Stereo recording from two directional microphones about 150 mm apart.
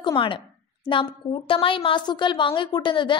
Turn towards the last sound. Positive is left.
turn(degrees=30)  # may be behind; listen again after turning